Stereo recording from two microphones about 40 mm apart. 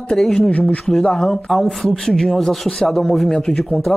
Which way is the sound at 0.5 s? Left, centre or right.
Left.